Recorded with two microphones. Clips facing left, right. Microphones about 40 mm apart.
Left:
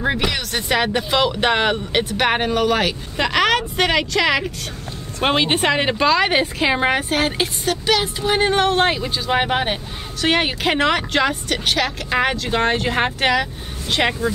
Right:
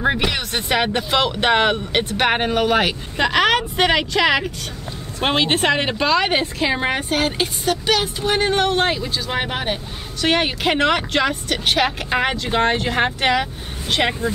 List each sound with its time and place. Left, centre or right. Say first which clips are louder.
0.0 s speech: right 1 dB; centre
6.4 s speech: left 2 dB; centre
10.2 s speech: even; centre
11.7 s speech: right 2 dB; centre
13.4 s speech: left 1 dB; centre